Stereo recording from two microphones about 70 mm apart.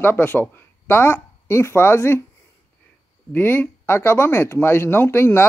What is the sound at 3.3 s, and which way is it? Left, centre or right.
Speech, left.